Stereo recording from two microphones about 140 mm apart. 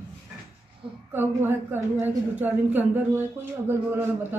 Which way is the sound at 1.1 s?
15° right (ahead or behind).